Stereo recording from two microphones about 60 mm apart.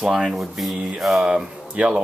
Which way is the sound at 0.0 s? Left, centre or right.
Centre.